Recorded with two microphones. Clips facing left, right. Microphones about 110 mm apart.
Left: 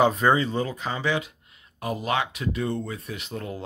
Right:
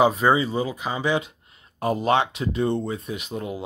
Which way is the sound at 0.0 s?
10° right (ahead or behind).